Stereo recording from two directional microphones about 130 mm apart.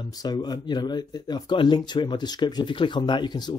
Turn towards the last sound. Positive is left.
turn(degrees=35)  # may be behind; listen again after turning